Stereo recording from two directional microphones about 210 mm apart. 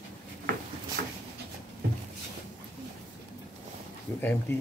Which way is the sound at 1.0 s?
50° right (ahead or behind).